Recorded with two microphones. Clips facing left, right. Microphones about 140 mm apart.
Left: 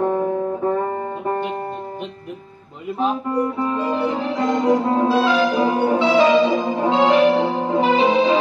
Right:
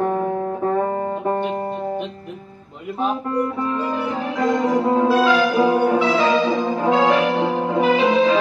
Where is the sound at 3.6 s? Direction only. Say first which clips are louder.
Left 2 dB; 25° left (ahead or behind).